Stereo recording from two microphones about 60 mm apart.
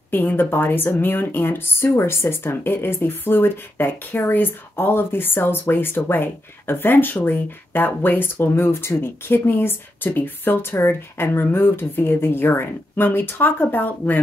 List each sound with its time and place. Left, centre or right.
0.1 s speech: left